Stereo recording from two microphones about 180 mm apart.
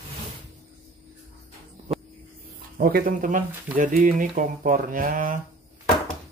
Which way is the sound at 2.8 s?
55° right (ahead or behind).